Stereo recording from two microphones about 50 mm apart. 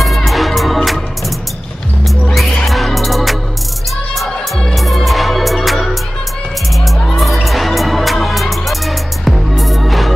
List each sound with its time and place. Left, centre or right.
0.0 s music: centre
2.6 s music: centre
7.4 s music: centre